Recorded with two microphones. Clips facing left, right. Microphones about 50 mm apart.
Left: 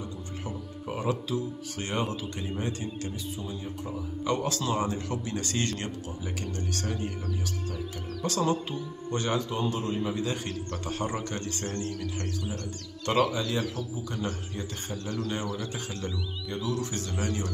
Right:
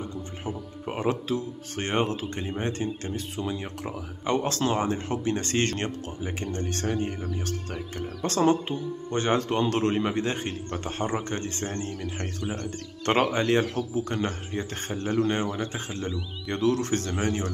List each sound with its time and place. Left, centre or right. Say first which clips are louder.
0.0 s music: right 3 dB; right
2.6 s speech: right 4 dB; right
3.3 s speech: right 5 dB; right
4.2 s speech: right 4 dB; right
8.2 s speech: right 5 dB; right
9.4 s a man's voice: right 6 dB; right
10.2 s speech: right 2 dB; right
13.0 s speech: right 3 dB; right
14.5 s speech: right 5 dB; right
16.4 s speech: right 8 dB; right
17.2 s speech: even; right